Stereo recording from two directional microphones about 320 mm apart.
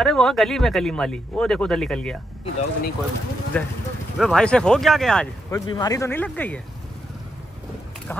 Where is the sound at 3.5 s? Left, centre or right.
Centre.